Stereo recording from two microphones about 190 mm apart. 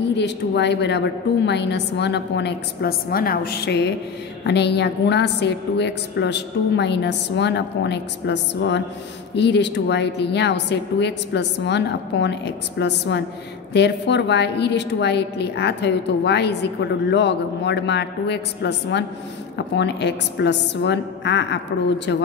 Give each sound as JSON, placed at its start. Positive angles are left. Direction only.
{"t": 0.1, "sound": "a woman's voice", "side_deg": 65}